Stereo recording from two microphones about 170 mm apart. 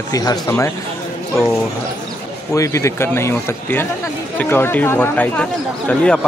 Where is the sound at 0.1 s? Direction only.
20° left (ahead or behind).